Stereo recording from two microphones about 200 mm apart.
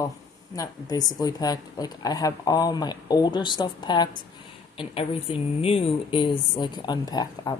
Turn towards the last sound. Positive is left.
turn(degrees=20)  # may be behind; listen again after turning